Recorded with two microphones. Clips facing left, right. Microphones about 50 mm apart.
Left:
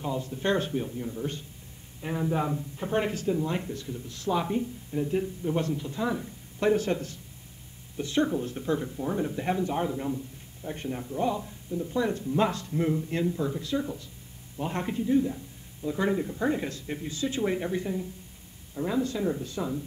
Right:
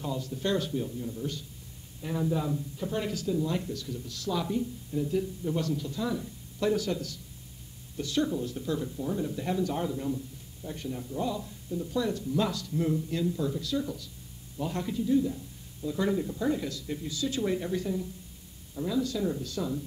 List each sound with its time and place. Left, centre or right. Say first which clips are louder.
0.0 s speech: left 2 dB; left